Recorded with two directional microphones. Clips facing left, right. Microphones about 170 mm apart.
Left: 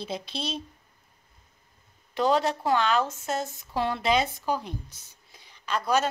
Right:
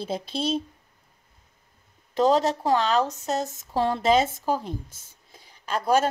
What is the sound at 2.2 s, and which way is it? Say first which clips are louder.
Speech: right 3 dB; 40° right (ahead or behind).